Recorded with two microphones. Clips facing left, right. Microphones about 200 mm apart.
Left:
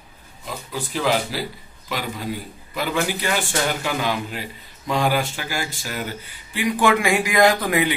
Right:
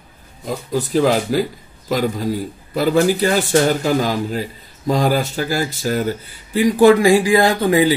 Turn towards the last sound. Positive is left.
turn(degrees=-30)  # may be behind; listen again after turning